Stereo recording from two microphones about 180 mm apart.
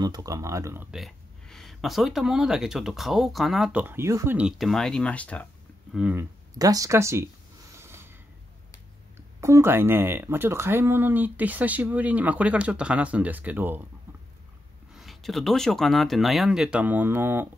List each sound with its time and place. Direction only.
0.0 s speech: 20° right (ahead or behind)
0.9 s speech: centre (ahead or behind)
5.9 s speech: 5° right (ahead or behind)
6.6 s speech: 20° right (ahead or behind)
7.7 s a sound: 15° right (ahead or behind)
9.1 s speech: 15° right (ahead or behind)
15.0 s speech: centre (ahead or behind)